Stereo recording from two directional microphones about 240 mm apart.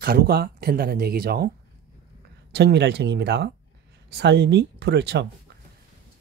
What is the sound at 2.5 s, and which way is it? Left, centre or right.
Speech, right.